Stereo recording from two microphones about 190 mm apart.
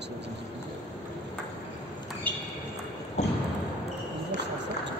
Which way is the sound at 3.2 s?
35° left (ahead or behind).